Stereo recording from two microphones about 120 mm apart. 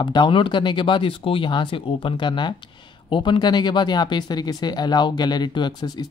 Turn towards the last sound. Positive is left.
turn(degrees=35)  # may be behind; listen again after turning